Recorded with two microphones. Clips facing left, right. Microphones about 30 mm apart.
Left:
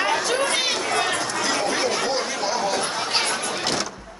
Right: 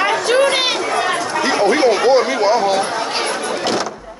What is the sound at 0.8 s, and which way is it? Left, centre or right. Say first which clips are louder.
Chatter: right 5 dB; centre.